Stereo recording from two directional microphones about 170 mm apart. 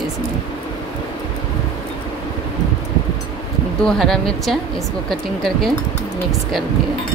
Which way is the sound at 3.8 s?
5° left (ahead or behind).